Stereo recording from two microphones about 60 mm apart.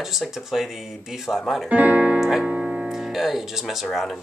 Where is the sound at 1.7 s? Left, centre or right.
Right.